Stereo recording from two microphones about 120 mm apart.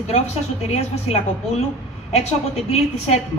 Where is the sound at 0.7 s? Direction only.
65° left (ahead or behind).